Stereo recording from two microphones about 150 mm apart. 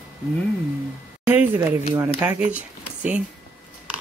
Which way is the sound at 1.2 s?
10° right (ahead or behind).